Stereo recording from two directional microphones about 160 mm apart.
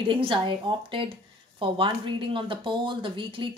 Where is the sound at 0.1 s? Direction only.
35° right (ahead or behind).